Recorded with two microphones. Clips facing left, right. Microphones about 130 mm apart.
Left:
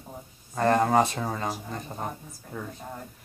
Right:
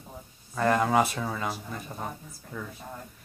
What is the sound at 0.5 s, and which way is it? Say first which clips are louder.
Speech: left 2 dB; 35° left (ahead or behind).